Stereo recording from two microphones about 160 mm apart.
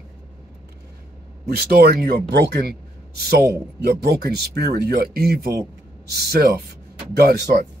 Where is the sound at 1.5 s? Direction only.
75° right (ahead or behind).